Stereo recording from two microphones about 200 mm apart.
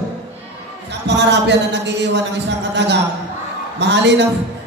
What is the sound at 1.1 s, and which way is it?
Speech, 60° right (ahead or behind).